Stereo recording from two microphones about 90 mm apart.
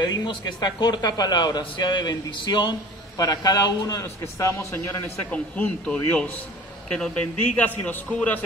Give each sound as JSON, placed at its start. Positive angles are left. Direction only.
{"t": 0.0, "sound": "a man's voice", "side_deg": 55}
{"t": 3.2, "sound": "a man's voice", "side_deg": 45}
{"t": 5.3, "sound": "a man's voice", "side_deg": 15}